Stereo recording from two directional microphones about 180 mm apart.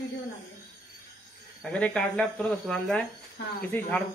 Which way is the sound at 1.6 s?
5° left (ahead or behind).